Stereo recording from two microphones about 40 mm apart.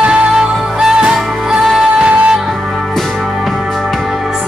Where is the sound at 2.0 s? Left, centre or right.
Right.